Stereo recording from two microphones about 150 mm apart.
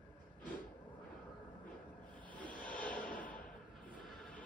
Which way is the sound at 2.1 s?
10° left (ahead or behind).